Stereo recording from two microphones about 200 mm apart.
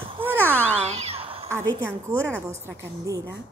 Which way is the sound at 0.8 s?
30° right (ahead or behind).